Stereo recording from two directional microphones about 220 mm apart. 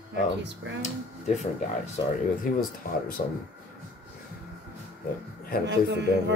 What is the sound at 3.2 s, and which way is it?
Speech, 40° left (ahead or behind).